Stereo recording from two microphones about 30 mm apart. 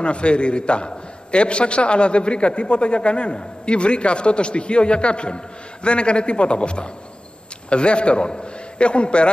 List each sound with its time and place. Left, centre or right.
0.0 s a man's voice: left